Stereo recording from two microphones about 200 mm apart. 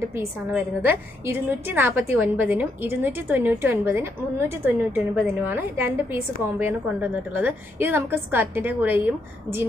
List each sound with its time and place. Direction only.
0.1 s a woman's voice: 10° right (ahead or behind)